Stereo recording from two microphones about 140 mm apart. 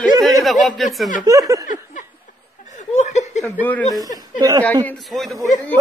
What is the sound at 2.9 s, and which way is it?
Chuckle, 55° left (ahead or behind).